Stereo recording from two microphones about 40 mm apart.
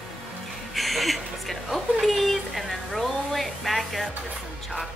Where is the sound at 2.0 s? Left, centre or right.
Centre.